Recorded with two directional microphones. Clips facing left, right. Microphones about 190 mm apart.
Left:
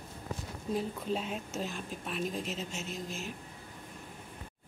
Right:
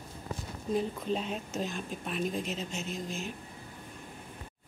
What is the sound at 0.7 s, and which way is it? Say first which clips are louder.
Speech: right 2 dB; 5° left (ahead or behind).